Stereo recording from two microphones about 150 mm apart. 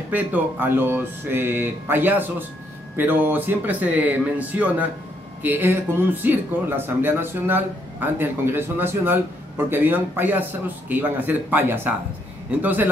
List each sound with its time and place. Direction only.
0.1 s speech: 10° right (ahead or behind)